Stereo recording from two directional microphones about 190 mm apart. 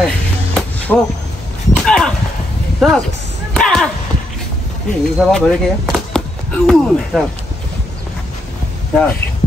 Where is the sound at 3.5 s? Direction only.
5° left (ahead or behind).